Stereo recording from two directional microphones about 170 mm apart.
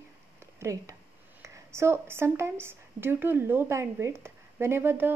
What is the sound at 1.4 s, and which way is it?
Speech, 15° right (ahead or behind).